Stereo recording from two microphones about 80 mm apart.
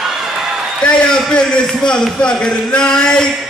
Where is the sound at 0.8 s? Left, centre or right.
Centre.